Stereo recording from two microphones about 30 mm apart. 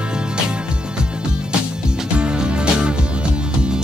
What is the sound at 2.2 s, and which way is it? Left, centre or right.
Music, right.